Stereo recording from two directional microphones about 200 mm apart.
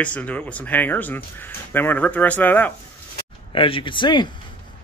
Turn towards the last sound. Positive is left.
turn(degrees=25)  # may be behind; listen again after turning